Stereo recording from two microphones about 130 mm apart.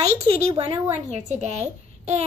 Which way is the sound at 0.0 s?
55° right (ahead or behind).